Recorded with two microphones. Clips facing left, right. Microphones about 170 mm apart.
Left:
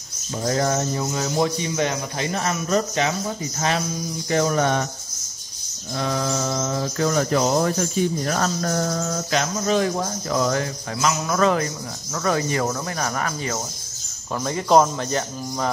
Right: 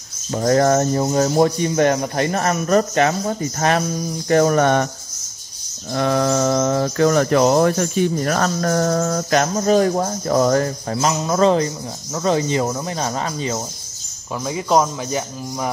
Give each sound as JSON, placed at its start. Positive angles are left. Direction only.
{"t": 0.3, "sound": "speech", "side_deg": -60}
{"t": 4.3, "sound": "cricket", "side_deg": -55}
{"t": 5.9, "sound": "speech", "side_deg": -60}
{"t": 14.4, "sound": "speech", "side_deg": -5}